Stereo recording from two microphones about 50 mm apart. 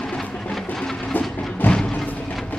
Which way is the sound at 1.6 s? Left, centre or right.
Left.